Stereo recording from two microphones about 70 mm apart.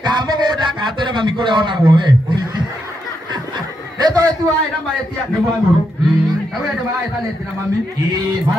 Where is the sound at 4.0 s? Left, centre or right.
Right.